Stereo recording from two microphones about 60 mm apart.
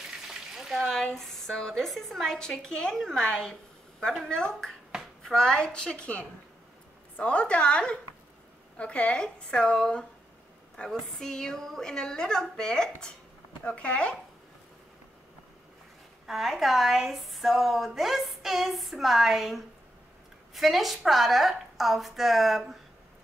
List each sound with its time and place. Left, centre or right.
0.3 s a sound: centre
0.9 s speech: centre
16.3 s a woman's voice: centre